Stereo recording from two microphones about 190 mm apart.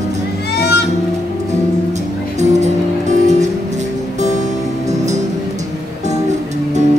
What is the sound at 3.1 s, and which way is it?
Music, 40° right (ahead or behind).